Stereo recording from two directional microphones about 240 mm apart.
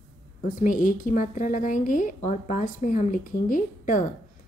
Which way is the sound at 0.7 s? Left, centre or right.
Left.